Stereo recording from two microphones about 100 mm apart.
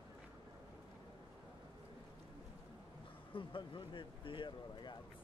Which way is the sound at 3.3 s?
55° left (ahead or behind).